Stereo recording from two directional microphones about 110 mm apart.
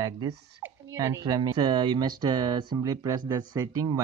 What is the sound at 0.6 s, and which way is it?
Speech, 20° right (ahead or behind).